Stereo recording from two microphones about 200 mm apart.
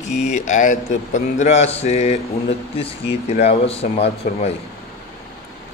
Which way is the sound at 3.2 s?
30° left (ahead or behind).